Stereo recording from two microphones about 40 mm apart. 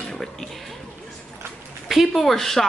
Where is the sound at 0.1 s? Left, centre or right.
Centre.